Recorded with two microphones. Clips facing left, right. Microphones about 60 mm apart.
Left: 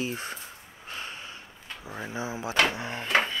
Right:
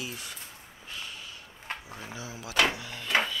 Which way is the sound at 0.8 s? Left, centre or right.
Left.